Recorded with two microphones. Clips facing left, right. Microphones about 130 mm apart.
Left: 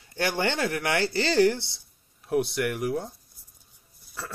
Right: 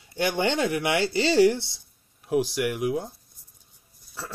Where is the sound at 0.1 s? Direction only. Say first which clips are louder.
Right 2 dB; 15° right (ahead or behind).